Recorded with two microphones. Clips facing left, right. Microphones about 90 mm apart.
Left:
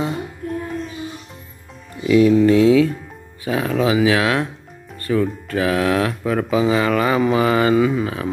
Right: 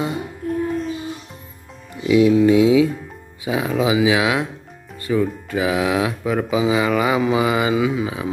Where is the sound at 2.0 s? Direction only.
15° right (ahead or behind).